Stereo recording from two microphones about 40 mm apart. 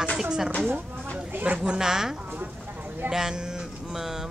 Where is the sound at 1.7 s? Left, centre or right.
Centre.